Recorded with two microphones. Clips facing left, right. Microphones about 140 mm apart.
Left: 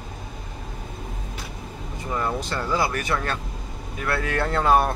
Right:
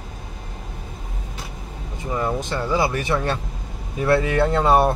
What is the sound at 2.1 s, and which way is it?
Speech, 15° right (ahead or behind).